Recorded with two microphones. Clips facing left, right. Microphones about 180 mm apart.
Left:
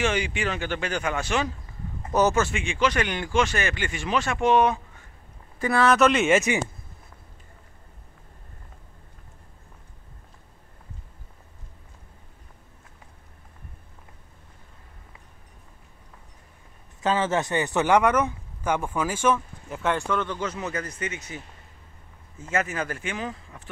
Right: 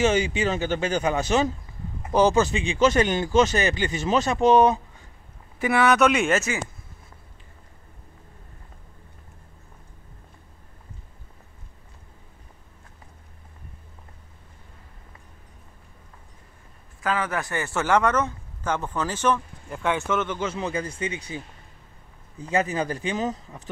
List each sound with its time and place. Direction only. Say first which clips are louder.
0.0 s speech: right 4 dB; 40° right (ahead or behind)
2.5 s speech: right 4 dB; 30° right (ahead or behind)
3.1 s speech: right 4 dB; 40° right (ahead or behind)
5.8 s speech: even; centre (ahead or behind)
6.3 s speech: left 3 dB; 15° left (ahead or behind)
17.0 s speech: left 3 dB; 25° left (ahead or behind); by 20.1 s centre (ahead or behind)
20.1 s speech: right 2 dB; 20° right (ahead or behind)
22.4 s speech: right 3 dB; 35° right (ahead or behind)